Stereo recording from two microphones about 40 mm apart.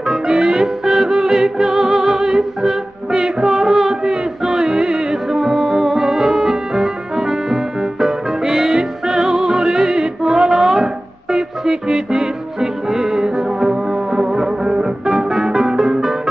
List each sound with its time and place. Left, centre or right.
0.0 s music: centre